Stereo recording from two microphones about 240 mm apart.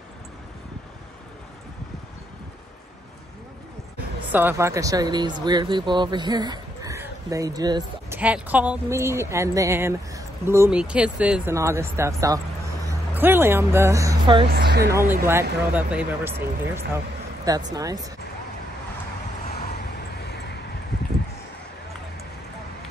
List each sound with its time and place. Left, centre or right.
4.3 s speech: centre
14.5 s speech: right
15.0 s speech: centre
19.5 s vehicle: left